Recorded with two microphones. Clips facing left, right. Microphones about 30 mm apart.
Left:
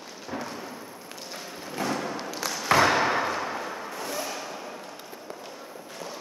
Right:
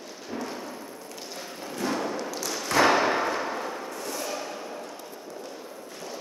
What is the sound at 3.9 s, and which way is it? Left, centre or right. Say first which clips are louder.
Music: left 1 dB; centre.